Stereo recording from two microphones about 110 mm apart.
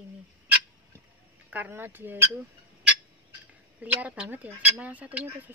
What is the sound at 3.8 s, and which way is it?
Speech, 10° right (ahead or behind).